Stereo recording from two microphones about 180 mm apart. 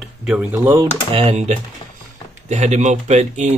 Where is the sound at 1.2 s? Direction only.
40° right (ahead or behind).